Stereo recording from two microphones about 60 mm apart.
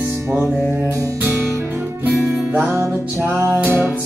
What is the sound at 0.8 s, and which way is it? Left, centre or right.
Music, right.